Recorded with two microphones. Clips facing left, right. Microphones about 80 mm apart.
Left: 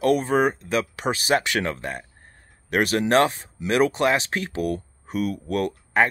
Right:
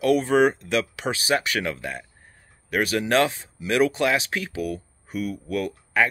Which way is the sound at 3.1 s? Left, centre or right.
Left.